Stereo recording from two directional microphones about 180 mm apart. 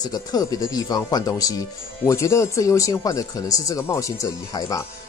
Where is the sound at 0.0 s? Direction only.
20° left (ahead or behind).